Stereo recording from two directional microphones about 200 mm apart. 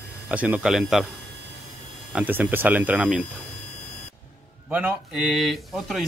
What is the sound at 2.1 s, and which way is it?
Speech, 10° right (ahead or behind).